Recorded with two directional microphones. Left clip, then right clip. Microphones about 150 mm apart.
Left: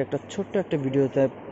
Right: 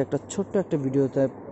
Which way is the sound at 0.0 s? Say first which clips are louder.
Right 1 dB; 25° right (ahead or behind).